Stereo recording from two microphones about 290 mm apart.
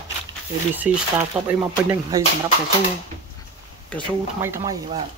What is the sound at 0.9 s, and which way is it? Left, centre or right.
Speech, centre.